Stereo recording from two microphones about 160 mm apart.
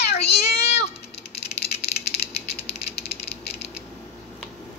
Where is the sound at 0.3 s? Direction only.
90° left.